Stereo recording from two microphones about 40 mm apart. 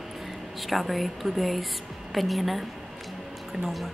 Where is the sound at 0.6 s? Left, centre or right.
Centre.